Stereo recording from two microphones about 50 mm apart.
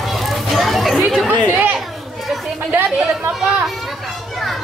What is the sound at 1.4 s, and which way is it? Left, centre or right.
Chatter, right.